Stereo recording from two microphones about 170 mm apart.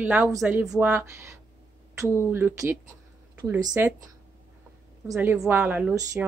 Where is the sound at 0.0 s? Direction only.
10° right (ahead or behind).